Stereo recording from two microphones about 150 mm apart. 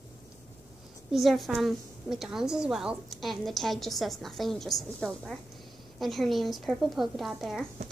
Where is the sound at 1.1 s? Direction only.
Centre (ahead or behind).